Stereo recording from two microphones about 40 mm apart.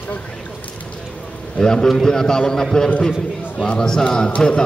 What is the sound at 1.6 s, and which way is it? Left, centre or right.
A man's voice, centre.